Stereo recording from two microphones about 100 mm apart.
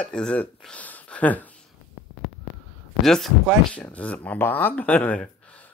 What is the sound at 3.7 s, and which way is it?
Speech, 10° left (ahead or behind).